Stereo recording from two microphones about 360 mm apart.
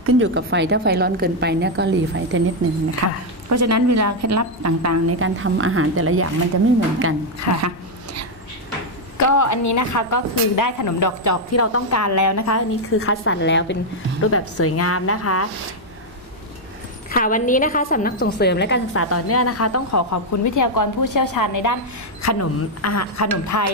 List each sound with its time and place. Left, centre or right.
0.0 s a woman's voice: right
3.0 s a woman's voice: right
7.6 s a sound: right
9.2 s a woman's voice: left
17.1 s a woman's voice: left
22.2 s a woman's voice: left